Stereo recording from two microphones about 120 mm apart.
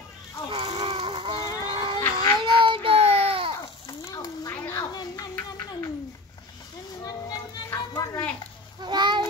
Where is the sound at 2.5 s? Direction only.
45° right (ahead or behind).